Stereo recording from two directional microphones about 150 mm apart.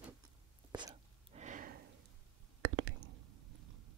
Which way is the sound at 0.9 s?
55° right (ahead or behind).